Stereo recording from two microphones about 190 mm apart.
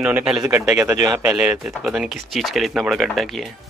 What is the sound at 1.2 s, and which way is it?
Speech, 5° right (ahead or behind).